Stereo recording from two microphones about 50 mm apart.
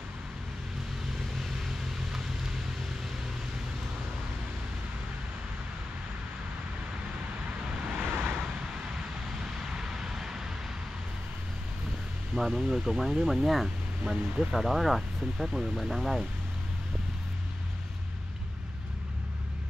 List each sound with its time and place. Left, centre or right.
8.0 s vehicle: right
9.7 s vehicle: centre
12.4 s speech: centre